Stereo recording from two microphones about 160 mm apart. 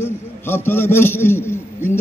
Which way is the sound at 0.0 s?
15° left (ahead or behind).